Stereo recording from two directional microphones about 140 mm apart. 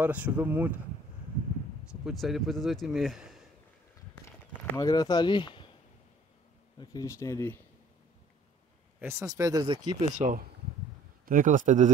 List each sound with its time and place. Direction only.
0.0 s speech: 10° right (ahead or behind)
1.9 s speech: 5° right (ahead or behind)
4.7 s speech: 25° left (ahead or behind)
6.8 s speech: 25° left (ahead or behind)
9.0 s speech: 25° right (ahead or behind)
9.9 s speech: 60° right (ahead or behind)
11.2 s speech: 70° right (ahead or behind)